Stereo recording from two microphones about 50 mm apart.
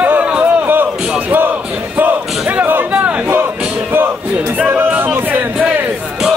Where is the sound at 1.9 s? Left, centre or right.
Right.